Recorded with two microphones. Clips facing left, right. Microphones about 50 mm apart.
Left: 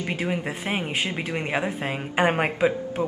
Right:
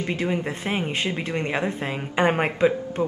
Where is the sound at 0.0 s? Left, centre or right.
Centre.